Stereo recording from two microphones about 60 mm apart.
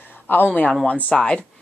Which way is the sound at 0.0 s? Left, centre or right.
Left.